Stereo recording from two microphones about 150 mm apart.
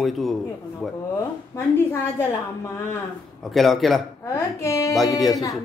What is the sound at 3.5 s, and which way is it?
Speech, centre (ahead or behind).